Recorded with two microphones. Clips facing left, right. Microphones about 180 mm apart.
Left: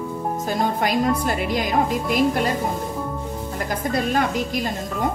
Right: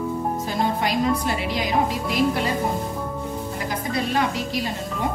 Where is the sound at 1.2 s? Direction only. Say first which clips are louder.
Left 2 dB; 50° left (ahead or behind).